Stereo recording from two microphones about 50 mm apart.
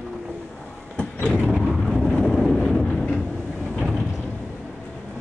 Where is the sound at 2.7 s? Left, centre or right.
Centre.